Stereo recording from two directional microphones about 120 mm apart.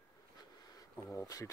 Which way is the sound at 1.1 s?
30° left (ahead or behind).